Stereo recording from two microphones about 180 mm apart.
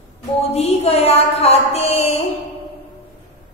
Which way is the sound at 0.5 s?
35° left (ahead or behind).